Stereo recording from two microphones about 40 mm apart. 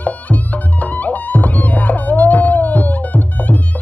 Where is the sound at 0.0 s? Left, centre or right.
Left.